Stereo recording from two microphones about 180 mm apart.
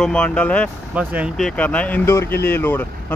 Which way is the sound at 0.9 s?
5° right (ahead or behind).